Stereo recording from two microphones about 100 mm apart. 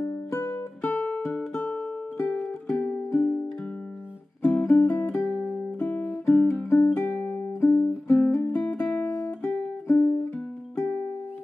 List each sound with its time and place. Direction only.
0.0 s music: 25° left (ahead or behind)
2.8 s music: 25° left (ahead or behind)
4.4 s music: 10° left (ahead or behind)
4.6 s music: 25° left (ahead or behind)
5.2 s music: 5° left (ahead or behind)
5.9 s music: 20° left (ahead or behind)
8.1 s music: 15° left (ahead or behind)
9.4 s music: 10° left (ahead or behind)
9.8 s music: 25° left (ahead or behind)